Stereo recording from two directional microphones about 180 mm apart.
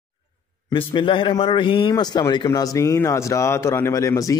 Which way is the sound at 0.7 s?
30° left (ahead or behind).